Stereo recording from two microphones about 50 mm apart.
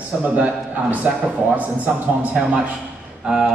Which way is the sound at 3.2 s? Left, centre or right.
Centre.